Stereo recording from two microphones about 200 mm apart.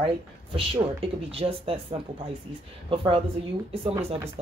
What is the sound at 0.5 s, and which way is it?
Speech, 25° right (ahead or behind).